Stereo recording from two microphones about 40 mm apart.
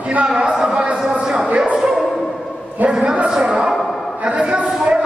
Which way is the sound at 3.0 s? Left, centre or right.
Right.